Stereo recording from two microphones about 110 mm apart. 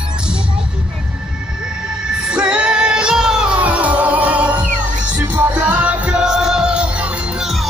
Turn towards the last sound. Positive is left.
turn(degrees=0)  # may be behind; listen again after turning